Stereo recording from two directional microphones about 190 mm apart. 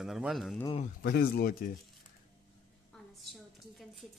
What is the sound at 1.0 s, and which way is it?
Speech, 50° left (ahead or behind).